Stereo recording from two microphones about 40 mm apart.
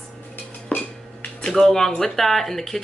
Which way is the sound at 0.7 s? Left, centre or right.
Left.